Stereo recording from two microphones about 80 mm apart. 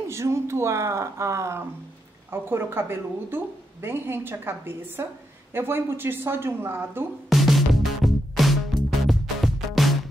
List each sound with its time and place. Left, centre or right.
0.1 s a woman's voice: right
7.2 s music: centre